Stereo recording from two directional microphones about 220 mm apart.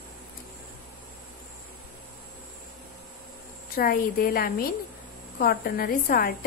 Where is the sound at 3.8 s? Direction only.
40° left (ahead or behind).